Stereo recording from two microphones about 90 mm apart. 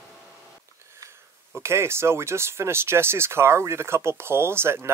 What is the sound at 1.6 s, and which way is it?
Speech, 30° right (ahead or behind).